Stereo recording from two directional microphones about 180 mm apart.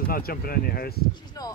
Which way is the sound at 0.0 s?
55° left (ahead or behind).